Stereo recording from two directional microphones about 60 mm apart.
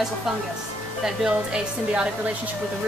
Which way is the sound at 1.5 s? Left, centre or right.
Centre.